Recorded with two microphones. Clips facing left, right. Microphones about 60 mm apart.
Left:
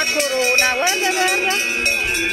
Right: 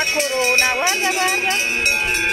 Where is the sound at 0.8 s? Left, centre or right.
Right.